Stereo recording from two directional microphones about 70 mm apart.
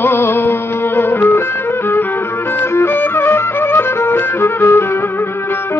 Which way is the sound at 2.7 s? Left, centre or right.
Left.